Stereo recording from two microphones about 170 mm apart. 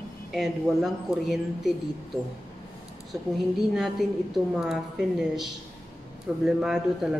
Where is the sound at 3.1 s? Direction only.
20° right (ahead or behind).